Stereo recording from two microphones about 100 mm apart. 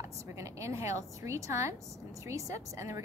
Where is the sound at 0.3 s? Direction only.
30° right (ahead or behind).